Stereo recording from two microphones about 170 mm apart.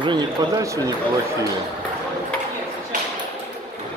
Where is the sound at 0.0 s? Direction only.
25° right (ahead or behind).